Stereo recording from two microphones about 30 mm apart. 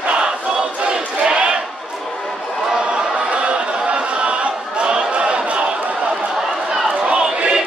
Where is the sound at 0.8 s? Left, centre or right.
Right.